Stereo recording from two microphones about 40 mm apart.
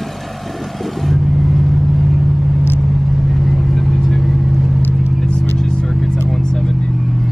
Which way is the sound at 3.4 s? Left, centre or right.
Centre.